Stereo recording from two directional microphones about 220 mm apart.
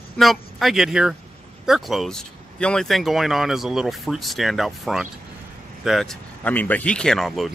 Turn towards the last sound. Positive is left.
turn(degrees=0)  # may be behind; listen again after turning